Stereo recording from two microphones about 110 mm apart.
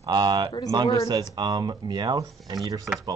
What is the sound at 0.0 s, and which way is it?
Speech, 40° right (ahead or behind).